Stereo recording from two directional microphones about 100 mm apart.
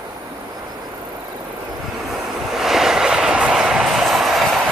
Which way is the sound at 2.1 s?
5° right (ahead or behind).